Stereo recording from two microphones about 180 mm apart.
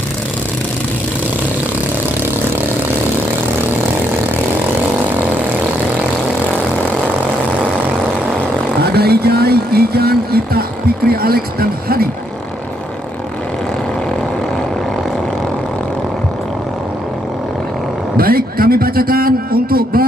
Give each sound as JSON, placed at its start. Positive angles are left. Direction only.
{"t": 8.9, "sound": "a sound", "side_deg": -60}
{"t": 11.1, "sound": "a man's voice", "side_deg": -55}
{"t": 18.1, "sound": "a man's voice", "side_deg": -55}